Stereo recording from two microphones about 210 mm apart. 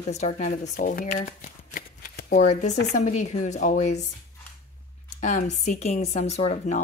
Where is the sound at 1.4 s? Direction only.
45° left (ahead or behind).